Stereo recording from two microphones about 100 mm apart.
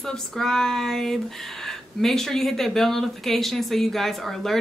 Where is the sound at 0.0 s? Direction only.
5° left (ahead or behind).